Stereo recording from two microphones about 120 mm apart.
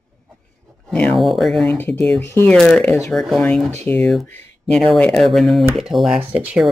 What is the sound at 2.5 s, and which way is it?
Speech, 5° left (ahead or behind).